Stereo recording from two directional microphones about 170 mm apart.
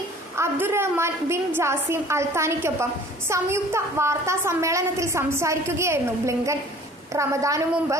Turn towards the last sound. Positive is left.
turn(degrees=-20)  # may be behind; listen again after turning